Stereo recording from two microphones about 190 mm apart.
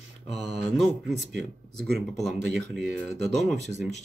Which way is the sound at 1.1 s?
65° right (ahead or behind).